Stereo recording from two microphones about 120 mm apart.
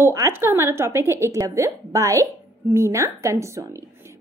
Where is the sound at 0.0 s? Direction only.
25° right (ahead or behind).